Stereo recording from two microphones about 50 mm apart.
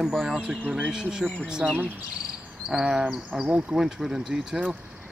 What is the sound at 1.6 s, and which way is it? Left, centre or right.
Speech, right.